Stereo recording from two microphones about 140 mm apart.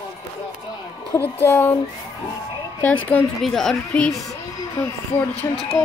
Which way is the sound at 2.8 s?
10° left (ahead or behind).